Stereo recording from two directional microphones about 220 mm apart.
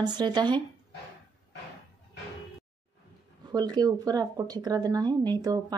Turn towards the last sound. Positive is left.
turn(degrees=-20)  # may be behind; listen again after turning